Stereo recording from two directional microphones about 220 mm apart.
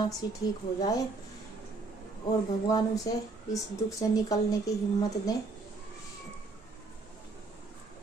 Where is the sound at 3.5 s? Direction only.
15° left (ahead or behind).